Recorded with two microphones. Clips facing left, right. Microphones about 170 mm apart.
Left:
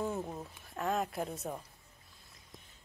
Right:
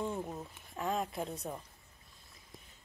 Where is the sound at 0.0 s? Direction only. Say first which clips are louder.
Left 1 dB; 5° left (ahead or behind).